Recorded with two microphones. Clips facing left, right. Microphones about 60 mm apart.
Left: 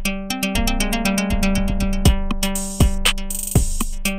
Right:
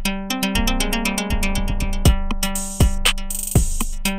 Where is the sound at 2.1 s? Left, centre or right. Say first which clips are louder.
Left 2 dB; centre.